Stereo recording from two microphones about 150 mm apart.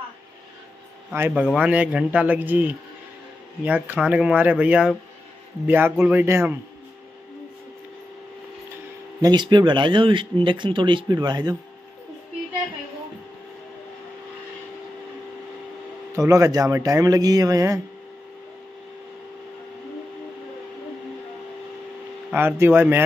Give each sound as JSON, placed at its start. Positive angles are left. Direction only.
{"t": 1.1, "sound": "speech", "side_deg": -10}
{"t": 9.2, "sound": "speech", "side_deg": -30}
{"t": 16.2, "sound": "speech", "side_deg": -20}
{"t": 22.3, "sound": "speech", "side_deg": -15}